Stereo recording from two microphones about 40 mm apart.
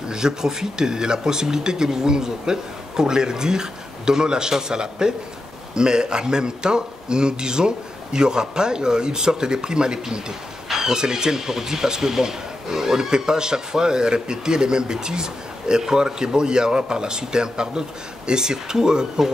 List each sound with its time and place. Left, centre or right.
0.1 s speech: centre